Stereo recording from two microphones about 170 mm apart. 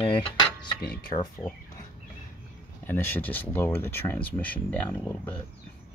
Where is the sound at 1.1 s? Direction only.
25° left (ahead or behind).